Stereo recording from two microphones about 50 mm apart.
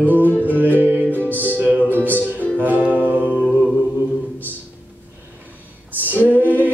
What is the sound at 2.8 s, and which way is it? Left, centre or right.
Music, right.